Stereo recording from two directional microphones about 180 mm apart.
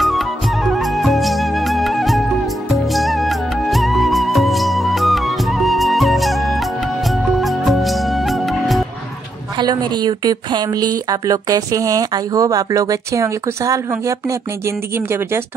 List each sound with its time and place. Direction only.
0.0 s music: centre (ahead or behind)
9.6 s a woman's voice: 25° right (ahead or behind)